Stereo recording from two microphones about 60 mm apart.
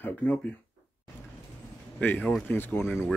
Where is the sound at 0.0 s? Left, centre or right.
Left.